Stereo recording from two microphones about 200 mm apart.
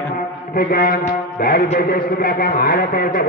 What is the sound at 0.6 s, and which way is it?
A man's voice, 50° left (ahead or behind).